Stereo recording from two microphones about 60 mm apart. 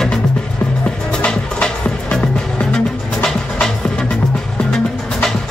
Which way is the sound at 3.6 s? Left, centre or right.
Centre.